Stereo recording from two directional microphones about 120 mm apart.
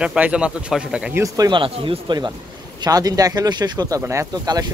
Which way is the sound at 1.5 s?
45° right (ahead or behind).